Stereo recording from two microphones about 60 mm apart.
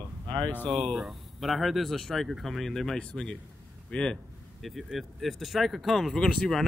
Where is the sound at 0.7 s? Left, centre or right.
Centre.